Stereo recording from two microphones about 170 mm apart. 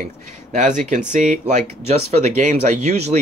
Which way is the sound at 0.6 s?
45° right (ahead or behind).